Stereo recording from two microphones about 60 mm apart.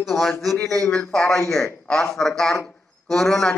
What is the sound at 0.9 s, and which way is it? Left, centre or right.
A man's voice, centre.